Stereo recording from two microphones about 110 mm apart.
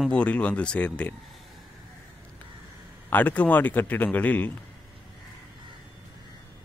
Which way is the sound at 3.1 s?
15° left (ahead or behind).